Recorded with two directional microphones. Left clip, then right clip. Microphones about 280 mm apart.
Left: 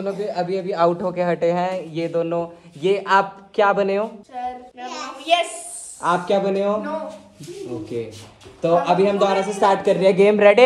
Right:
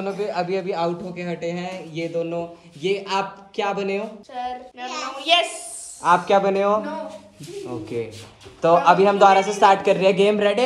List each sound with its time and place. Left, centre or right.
0.0 s a woman's voice: centre
1.1 s a man's voice: left
1.6 s a woman's voice: centre